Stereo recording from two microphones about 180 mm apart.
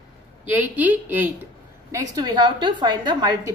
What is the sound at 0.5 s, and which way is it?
A woman's voice, 10° right (ahead or behind).